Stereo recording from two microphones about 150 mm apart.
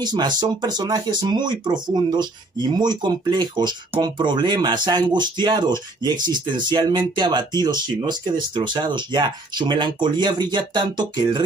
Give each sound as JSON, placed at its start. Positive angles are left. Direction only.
{"t": 0.0, "sound": "speech", "side_deg": -30}